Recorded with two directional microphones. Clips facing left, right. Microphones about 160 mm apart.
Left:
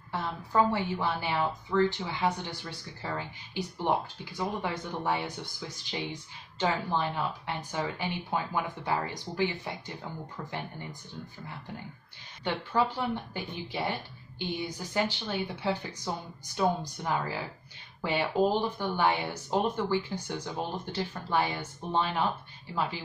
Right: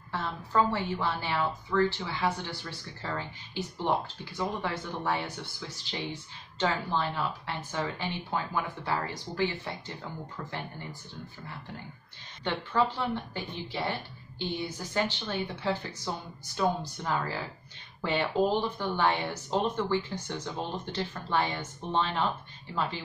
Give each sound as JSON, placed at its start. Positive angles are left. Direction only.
{"t": 0.1, "sound": "a woman's voice", "side_deg": 15}
{"t": 12.4, "sound": "a woman's voice", "side_deg": 15}